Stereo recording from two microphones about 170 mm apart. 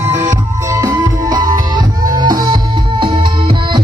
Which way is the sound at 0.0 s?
15° right (ahead or behind).